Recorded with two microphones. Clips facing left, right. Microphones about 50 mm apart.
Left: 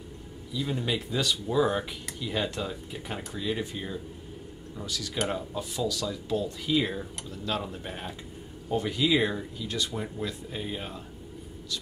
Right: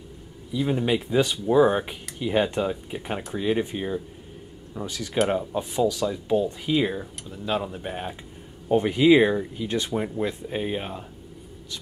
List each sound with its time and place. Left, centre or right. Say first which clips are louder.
0.5 s speech: right 7 dB; right
8.6 s speech: right 9 dB; right